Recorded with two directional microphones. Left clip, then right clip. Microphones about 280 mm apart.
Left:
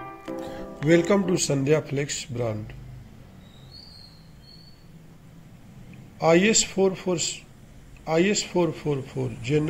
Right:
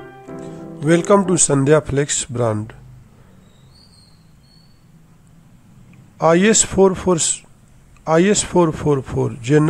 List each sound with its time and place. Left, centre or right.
0.7 s a man's voice: centre
6.1 s a man's voice: right